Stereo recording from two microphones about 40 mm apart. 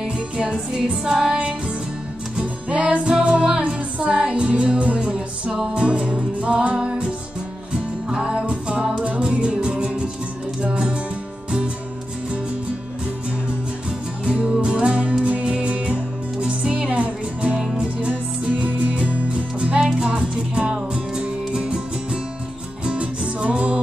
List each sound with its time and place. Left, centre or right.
0.0 s music: right
14.2 s music: right
19.8 s music: centre